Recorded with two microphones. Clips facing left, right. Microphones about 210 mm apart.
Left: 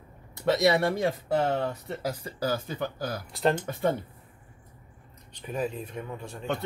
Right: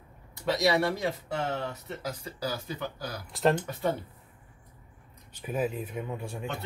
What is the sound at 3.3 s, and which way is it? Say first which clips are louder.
Speech: right 1 dB; centre (ahead or behind).